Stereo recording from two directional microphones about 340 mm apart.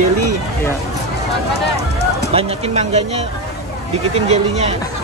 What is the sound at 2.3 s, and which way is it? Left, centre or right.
Speech, centre.